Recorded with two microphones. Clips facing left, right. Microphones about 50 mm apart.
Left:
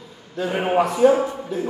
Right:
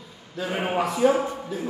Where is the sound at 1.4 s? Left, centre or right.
Centre.